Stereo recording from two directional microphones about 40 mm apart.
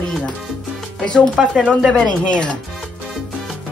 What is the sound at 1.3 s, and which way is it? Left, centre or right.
Speech, centre.